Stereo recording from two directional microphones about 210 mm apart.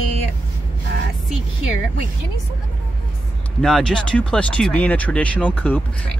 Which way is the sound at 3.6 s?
Centre (ahead or behind).